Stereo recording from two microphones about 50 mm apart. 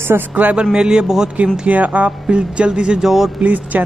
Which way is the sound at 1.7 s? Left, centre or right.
Right.